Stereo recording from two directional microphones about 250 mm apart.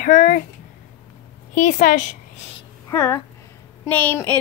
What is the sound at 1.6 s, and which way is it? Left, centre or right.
Speech, left.